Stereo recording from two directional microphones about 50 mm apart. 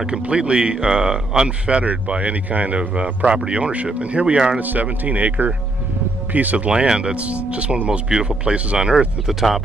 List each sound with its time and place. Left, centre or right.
0.0 s speech: centre
6.7 s speech: centre
9.3 s speech: centre